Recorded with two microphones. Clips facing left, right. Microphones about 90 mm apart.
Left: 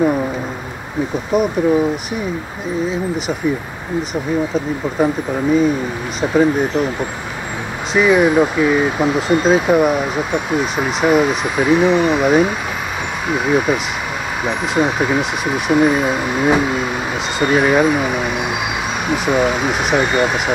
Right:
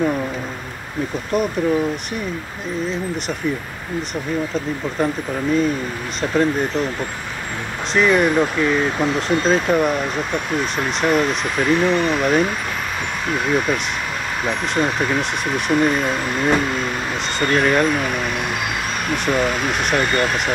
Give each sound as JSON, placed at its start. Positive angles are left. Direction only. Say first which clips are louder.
{"t": 1.3, "sound": "speech", "louder": "left 4 dB", "side_deg": 5}
{"t": 4.1, "sound": "speech", "louder": "left 4 dB", "side_deg": 5}